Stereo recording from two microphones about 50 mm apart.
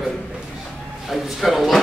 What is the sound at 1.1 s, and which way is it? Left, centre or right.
Speech, centre.